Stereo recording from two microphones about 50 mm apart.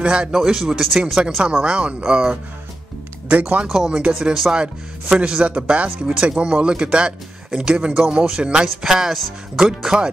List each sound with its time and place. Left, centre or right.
0.0 s speech: right
0.3 s speech: centre
1.4 s speech: centre
3.3 s speech: right
3.6 s speech: centre
5.1 s speech: centre